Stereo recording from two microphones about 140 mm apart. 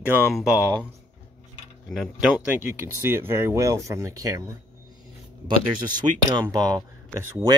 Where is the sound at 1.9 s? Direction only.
Centre (ahead or behind); by 4.5 s 25° right (ahead or behind).